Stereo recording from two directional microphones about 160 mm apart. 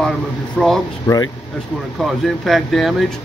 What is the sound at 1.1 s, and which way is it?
Speech, 25° left (ahead or behind).